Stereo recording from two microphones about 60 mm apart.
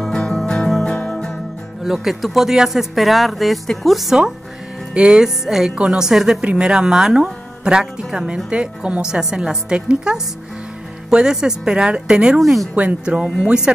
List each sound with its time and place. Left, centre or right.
0.0 s music: centre
1.9 s speech: centre
4.9 s speech: centre
12.4 s speech: centre
12.7 s speech: right